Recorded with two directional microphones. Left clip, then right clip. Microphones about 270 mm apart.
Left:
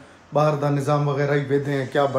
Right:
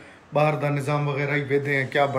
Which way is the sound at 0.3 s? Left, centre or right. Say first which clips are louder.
Left 2 dB; centre.